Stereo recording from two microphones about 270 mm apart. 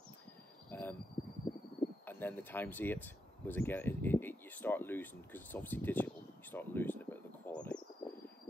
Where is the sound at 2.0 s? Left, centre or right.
Centre.